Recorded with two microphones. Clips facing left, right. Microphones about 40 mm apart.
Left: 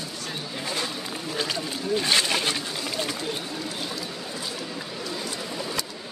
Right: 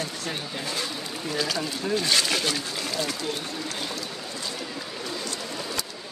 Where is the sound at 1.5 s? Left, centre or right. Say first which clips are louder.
Even; left.